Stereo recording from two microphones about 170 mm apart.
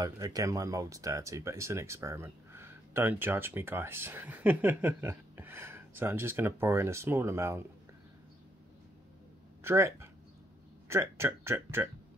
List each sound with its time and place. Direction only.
0.0 s speech: 20° right (ahead or behind)
9.6 s speech: 15° right (ahead or behind)